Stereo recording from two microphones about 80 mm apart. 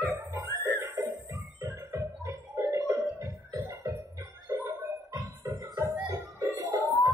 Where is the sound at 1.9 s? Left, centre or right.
Right.